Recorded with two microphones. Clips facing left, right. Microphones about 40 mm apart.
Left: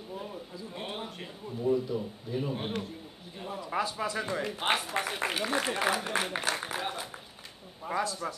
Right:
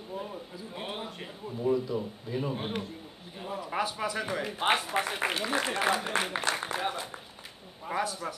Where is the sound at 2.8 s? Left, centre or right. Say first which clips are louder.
Even; centre.